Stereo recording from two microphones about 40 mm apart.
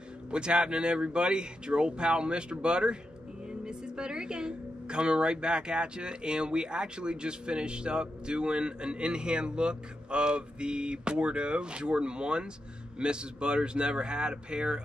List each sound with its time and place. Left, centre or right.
0.3 s speech: right